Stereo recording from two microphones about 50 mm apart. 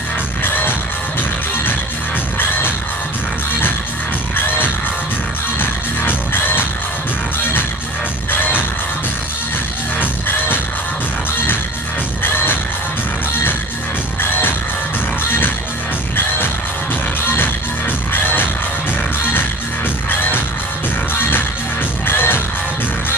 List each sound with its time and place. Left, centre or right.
0.4 s music: left
5.6 s music: left
8.3 s music: left
9.9 s music: left
12.2 s music: left
18.1 s music: left
20.1 s music: left